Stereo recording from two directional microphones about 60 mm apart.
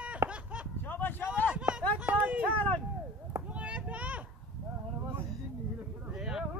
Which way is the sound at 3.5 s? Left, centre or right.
Right.